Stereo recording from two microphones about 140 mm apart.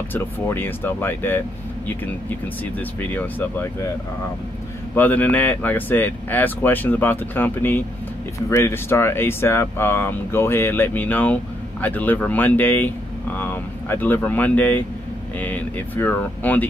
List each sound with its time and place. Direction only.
0.1 s speech: 15° left (ahead or behind)
4.9 s speech: 10° left (ahead or behind)